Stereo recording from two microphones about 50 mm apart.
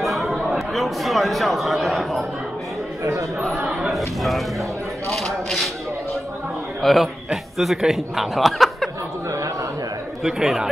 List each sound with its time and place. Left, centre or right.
0.0 s speech: centre
3.0 s speech: right
3.8 s speech: centre
6.8 s a man's voice: centre
10.2 s speech: centre